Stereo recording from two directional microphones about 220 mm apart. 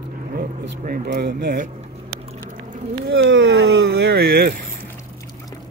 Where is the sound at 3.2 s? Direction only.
60° right (ahead or behind).